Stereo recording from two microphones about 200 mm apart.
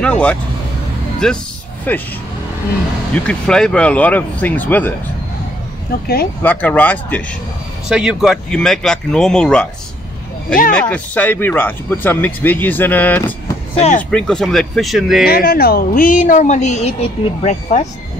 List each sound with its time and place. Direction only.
0.0 s speech: 5° left (ahead or behind)
3.3 s speech: 5° left (ahead or behind)
5.9 s a woman's voice: 50° left (ahead or behind)
6.4 s speech: 10° left (ahead or behind)
7.9 s speech: 5° right (ahead or behind)
10.7 s speech: 5° left (ahead or behind)
13.7 s speech: 35° left (ahead or behind)
14.1 s speech: 5° left (ahead or behind)
15.2 s a woman's voice: 50° left (ahead or behind)